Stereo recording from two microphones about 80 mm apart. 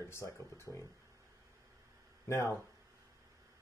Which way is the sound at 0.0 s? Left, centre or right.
Left.